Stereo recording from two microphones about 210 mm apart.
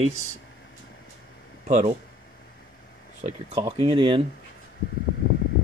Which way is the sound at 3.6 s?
20° right (ahead or behind).